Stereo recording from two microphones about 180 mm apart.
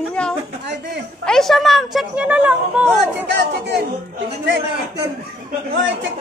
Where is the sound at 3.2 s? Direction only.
75° right (ahead or behind).